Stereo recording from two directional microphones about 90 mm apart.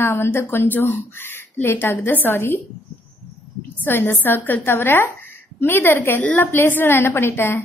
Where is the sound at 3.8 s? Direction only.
25° left (ahead or behind).